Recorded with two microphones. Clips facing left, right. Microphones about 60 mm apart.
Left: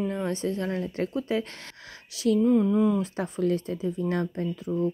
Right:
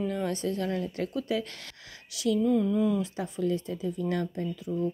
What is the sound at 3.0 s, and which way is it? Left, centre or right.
Speech, left.